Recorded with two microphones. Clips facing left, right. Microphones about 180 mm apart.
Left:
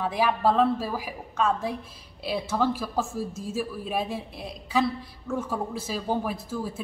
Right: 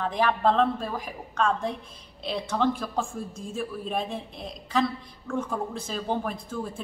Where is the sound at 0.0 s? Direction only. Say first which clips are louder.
Even; 10° left (ahead or behind).